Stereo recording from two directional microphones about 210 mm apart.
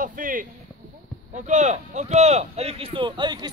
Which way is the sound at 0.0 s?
40° right (ahead or behind).